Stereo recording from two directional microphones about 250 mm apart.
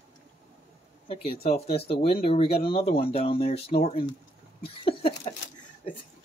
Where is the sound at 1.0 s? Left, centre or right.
Left.